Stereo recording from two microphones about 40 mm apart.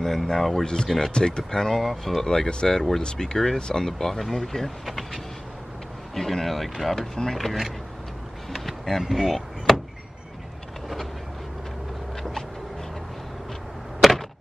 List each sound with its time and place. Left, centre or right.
0.0 s speech: centre
0.7 s speech: centre
1.8 s speech: centre
2.2 s speech: centre
4.8 s speech: centre
8.5 s a sound: centre
9.0 s speech: centre
12.2 s a sound: centre
14.0 s a sound: centre